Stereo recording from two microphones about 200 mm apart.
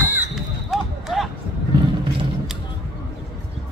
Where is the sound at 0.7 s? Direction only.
Centre (ahead or behind).